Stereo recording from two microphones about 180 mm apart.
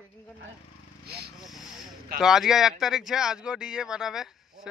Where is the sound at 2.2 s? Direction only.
Centre (ahead or behind).